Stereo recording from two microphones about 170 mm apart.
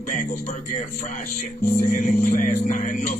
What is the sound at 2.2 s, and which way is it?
Music, 55° left (ahead or behind).